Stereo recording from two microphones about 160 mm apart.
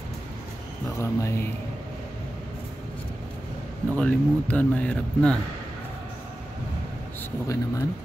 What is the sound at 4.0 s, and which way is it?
Speech, 10° left (ahead or behind).